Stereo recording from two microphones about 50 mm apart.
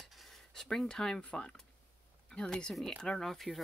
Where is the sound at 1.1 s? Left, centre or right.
Left.